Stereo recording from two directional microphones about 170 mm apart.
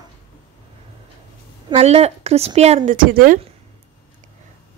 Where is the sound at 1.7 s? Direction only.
40° right (ahead or behind); by 3.3 s 55° right (ahead or behind).